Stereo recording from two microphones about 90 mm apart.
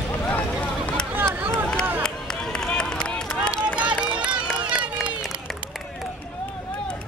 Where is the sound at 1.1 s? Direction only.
25° right (ahead or behind).